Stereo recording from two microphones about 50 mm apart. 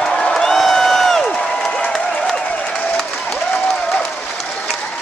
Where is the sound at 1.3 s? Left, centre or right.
Centre.